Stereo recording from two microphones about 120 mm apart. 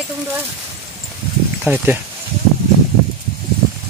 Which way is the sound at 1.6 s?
15° right (ahead or behind).